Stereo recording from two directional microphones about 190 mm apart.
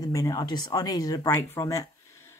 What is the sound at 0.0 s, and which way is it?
A woman's voice, 20° left (ahead or behind).